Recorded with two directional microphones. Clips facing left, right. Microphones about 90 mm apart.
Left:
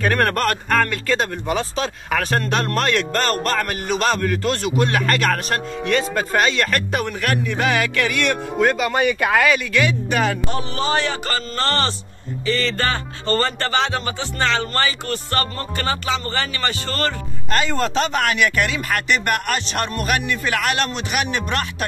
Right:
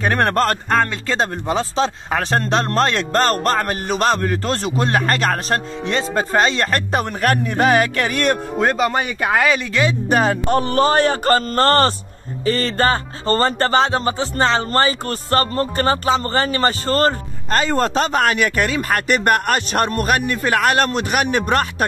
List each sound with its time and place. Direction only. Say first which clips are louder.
0.0 s speech: right 2 dB; 25° right (ahead or behind)
10.6 s speech: right 6 dB; 50° right (ahead or behind)